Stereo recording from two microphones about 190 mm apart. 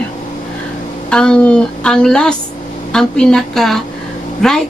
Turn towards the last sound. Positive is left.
turn(degrees=0)  # may be behind; listen again after turning